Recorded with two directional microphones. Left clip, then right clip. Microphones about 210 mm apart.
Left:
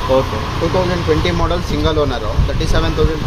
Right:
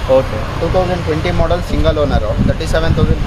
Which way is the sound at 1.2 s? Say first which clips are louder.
Right 2 dB; 15° right (ahead or behind).